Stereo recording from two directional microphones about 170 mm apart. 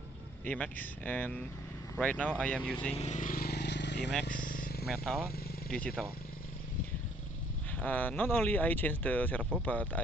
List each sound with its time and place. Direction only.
0.5 s speech: 10° left (ahead or behind)
2.9 s vehicle: 40° left (ahead or behind); by 4.1 s 90° left
4.2 s vehicle: 60° left (ahead or behind)
4.8 s speech: centre (ahead or behind)
7.7 s speech: 10° left (ahead or behind)